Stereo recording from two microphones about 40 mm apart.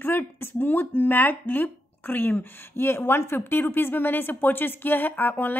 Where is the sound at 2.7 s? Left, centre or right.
Left.